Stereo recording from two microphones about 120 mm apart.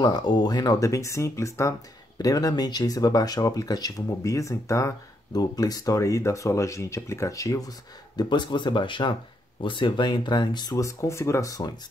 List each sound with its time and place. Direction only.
0.0 s speech: 35° left (ahead or behind)
8.2 s speech: 40° left (ahead or behind)